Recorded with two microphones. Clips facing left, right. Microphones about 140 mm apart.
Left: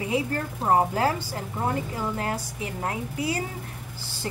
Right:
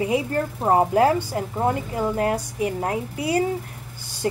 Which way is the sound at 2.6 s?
30° right (ahead or behind).